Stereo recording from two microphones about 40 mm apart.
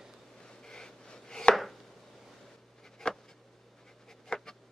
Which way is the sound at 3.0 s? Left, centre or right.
Left.